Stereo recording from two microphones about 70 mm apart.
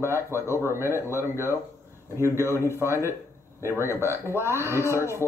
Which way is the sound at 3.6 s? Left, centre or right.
Left.